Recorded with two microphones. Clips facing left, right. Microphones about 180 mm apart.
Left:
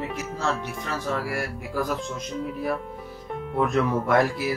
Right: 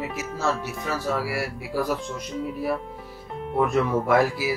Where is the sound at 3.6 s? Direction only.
Centre (ahead or behind).